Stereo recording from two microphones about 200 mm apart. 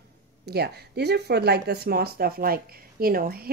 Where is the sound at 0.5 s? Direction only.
55° right (ahead or behind).